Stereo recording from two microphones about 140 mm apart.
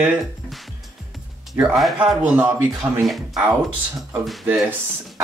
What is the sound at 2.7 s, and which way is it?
Speech, 25° right (ahead or behind).